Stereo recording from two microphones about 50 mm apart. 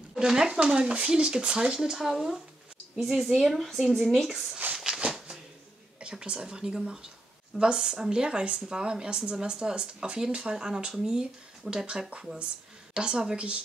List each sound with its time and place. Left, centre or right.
0.1 s a woman's voice: centre
4.7 s a sound: centre
5.9 s a woman's voice: centre